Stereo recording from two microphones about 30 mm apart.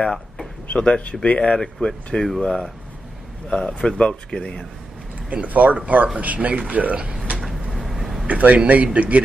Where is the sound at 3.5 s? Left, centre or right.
Left.